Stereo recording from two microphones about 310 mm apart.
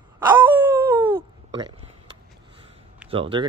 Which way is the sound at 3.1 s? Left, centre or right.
Centre.